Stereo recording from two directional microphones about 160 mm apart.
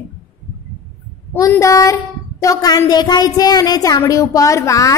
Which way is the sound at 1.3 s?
20° left (ahead or behind).